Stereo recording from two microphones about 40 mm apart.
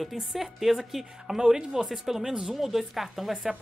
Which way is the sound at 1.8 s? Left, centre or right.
Centre.